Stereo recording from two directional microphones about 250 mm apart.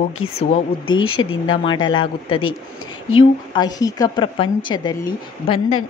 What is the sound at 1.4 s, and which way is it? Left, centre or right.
A woman's voice, centre.